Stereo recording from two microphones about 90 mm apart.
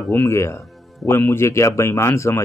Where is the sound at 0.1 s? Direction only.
30° left (ahead or behind).